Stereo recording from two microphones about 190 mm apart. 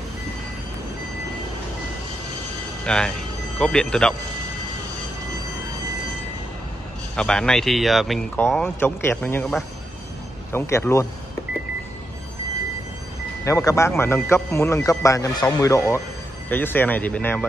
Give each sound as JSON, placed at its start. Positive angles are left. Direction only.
{"t": 2.8, "sound": "speech", "side_deg": 5}
{"t": 7.2, "sound": "speech", "side_deg": 5}
{"t": 13.5, "sound": "speech", "side_deg": 15}